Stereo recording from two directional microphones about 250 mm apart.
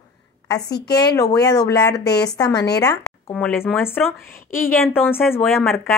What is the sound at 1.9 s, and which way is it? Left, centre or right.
Speech, left.